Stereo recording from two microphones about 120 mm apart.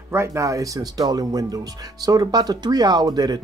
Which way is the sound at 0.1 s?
25° right (ahead or behind).